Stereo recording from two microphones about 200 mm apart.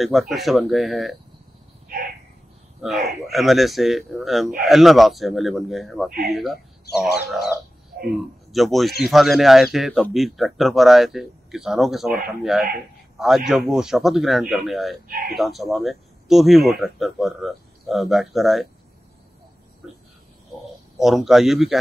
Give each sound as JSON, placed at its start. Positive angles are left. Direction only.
{"t": 0.0, "sound": "speech", "side_deg": 0}
{"t": 2.8, "sound": "speech", "side_deg": 0}
{"t": 7.9, "sound": "a sound", "side_deg": -45}
{"t": 8.5, "sound": "speech", "side_deg": 0}
{"t": 13.5, "sound": "speech", "side_deg": 0}
{"t": 15.0, "sound": "speech", "side_deg": -50}
{"t": 15.3, "sound": "speech", "side_deg": 0}
{"t": 21.0, "sound": "speech", "side_deg": 0}